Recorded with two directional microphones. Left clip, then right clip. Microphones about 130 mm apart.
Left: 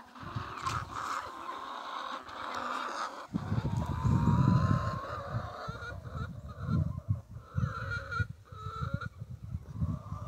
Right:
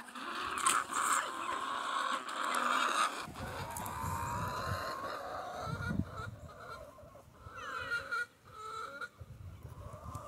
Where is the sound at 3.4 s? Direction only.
85° left.